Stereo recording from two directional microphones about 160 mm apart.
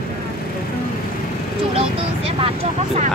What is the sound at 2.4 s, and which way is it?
Speech, 45° right (ahead or behind).